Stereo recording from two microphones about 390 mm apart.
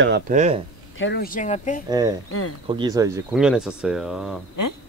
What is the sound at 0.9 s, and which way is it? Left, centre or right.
Speech, left.